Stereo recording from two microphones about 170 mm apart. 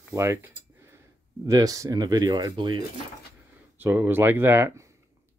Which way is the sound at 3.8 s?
10° right (ahead or behind).